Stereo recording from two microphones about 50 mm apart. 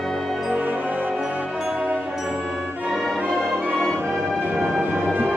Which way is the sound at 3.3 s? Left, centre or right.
Right.